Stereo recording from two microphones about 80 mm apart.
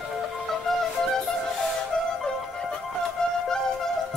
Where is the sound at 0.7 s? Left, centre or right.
Centre.